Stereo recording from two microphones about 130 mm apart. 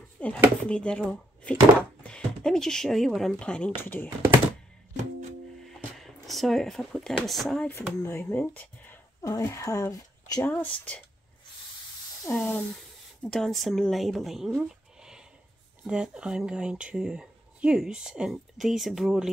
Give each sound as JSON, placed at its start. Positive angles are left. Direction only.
{"t": 0.2, "sound": "chopping", "side_deg": 10}
{"t": 0.7, "sound": "speech", "side_deg": 10}
{"t": 5.7, "sound": "a sound", "side_deg": 0}
{"t": 7.2, "sound": "speech", "side_deg": 0}
{"t": 7.7, "sound": "speech", "side_deg": 20}
{"t": 8.4, "sound": "a sound", "side_deg": 15}
{"t": 9.3, "sound": "speech", "side_deg": 25}
{"t": 10.4, "sound": "speech", "side_deg": 10}
{"t": 12.3, "sound": "speech", "side_deg": 10}